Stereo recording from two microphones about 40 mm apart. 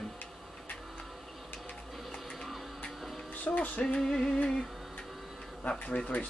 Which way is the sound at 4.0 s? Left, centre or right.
Centre.